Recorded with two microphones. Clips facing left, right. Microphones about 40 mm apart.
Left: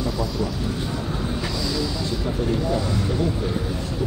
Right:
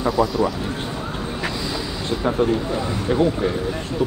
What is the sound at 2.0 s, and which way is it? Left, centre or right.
Speech, right.